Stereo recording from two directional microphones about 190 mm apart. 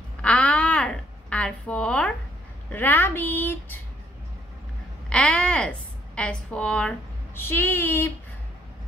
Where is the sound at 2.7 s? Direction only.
10° left (ahead or behind).